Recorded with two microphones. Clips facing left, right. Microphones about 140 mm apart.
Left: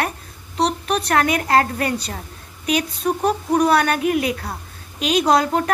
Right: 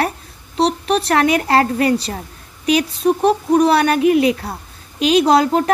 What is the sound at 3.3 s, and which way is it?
Speech, 30° right (ahead or behind).